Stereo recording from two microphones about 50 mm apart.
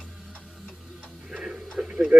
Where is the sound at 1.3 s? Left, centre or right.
Centre.